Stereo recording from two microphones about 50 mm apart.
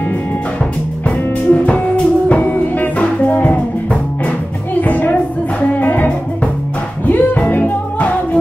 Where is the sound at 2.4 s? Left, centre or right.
Left.